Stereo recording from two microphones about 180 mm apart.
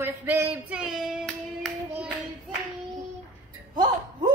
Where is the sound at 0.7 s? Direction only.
5° right (ahead or behind).